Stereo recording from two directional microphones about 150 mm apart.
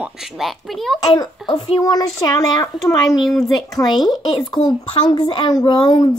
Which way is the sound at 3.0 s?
Centre (ahead or behind).